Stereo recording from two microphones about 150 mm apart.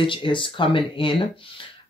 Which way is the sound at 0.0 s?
35° left (ahead or behind).